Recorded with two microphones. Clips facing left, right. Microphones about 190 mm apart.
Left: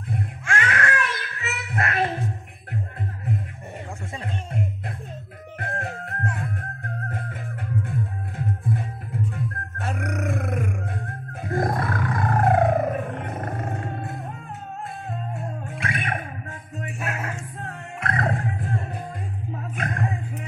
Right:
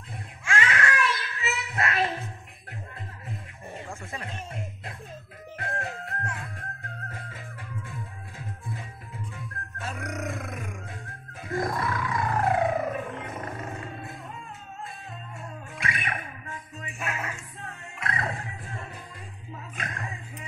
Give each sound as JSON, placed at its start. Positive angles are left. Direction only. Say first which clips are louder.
{"t": 0.1, "sound": "music", "louder": "left 3 dB", "side_deg": 55}
{"t": 5.6, "sound": "music", "louder": "left 3 dB", "side_deg": 50}
{"t": 19.5, "sound": "a sound", "louder": "left 7 dB", "side_deg": 55}